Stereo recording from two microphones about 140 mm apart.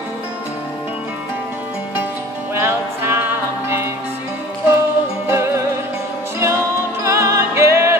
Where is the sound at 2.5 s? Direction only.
15° right (ahead or behind).